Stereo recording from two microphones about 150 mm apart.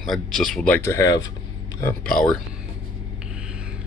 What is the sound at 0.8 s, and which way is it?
Speech, 20° left (ahead or behind).